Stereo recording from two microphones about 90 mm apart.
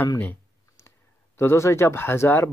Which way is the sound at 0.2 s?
25° left (ahead or behind).